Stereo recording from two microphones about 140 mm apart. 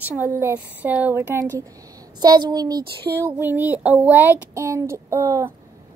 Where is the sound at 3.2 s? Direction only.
15° right (ahead or behind).